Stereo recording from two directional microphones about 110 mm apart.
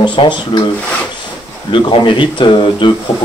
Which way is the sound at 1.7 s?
45° left (ahead or behind).